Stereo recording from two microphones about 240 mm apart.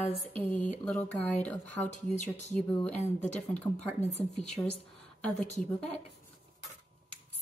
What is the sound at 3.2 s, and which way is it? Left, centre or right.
Speech, centre.